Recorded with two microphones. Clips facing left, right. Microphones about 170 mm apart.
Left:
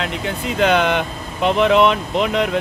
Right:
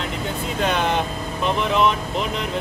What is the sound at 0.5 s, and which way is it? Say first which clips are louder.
Speech: left 5 dB; 90° left.